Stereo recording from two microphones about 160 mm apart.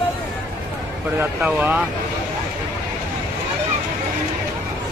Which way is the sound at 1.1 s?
10° right (ahead or behind).